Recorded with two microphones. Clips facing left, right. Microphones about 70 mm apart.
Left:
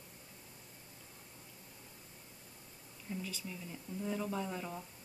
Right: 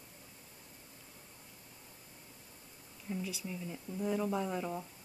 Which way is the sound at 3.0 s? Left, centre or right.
Centre.